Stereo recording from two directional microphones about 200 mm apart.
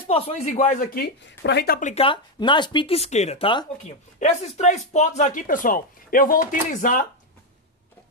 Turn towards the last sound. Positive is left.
turn(degrees=40)  # may be behind; listen again after turning